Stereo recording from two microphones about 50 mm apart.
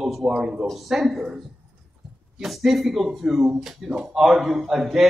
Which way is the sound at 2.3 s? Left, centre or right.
Centre.